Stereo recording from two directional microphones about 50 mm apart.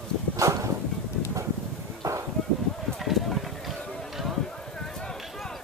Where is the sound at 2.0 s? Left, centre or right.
Right.